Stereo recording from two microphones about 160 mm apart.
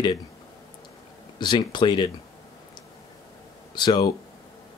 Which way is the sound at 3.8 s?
25° left (ahead or behind).